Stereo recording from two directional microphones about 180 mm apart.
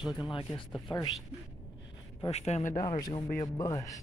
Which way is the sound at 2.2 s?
35° left (ahead or behind).